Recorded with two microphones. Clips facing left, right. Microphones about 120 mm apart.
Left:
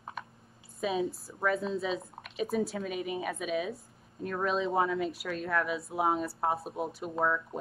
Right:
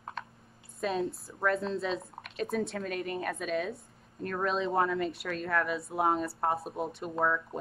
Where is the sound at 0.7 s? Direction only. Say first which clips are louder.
Even; centre (ahead or behind).